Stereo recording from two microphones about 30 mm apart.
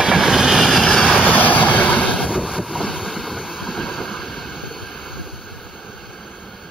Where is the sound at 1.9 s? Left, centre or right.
Left.